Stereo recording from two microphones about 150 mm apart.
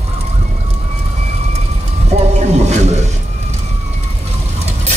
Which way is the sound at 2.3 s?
50° right (ahead or behind).